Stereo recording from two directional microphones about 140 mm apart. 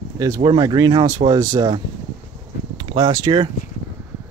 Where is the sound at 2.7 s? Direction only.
35° right (ahead or behind).